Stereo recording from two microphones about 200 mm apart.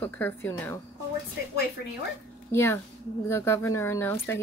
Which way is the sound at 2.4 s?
10° left (ahead or behind).